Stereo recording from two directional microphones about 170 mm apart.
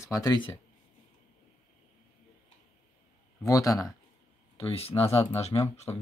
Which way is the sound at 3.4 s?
20° left (ahead or behind).